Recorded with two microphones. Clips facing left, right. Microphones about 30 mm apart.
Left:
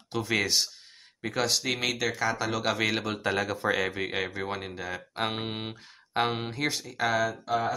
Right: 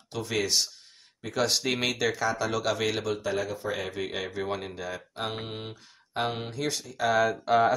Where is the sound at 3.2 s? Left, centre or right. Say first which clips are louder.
Left 2 dB; left.